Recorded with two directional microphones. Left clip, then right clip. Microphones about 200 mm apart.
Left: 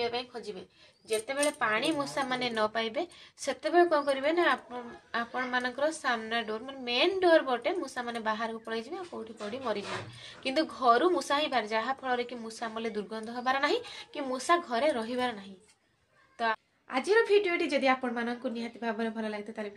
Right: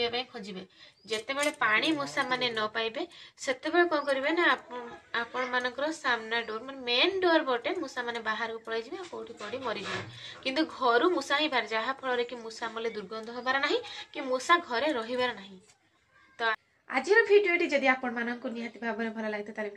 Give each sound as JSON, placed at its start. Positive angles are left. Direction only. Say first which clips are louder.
{"t": 1.0, "sound": "a woman's voice", "louder": "left 1 dB", "side_deg": 45}
{"t": 10.4, "sound": "a woman's voice", "louder": "left 1 dB", "side_deg": 45}
{"t": 16.9, "sound": "a woman's voice", "louder": "right 2 dB", "side_deg": 10}